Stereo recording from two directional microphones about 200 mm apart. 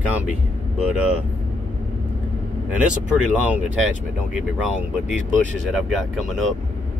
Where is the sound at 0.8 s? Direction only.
5° right (ahead or behind).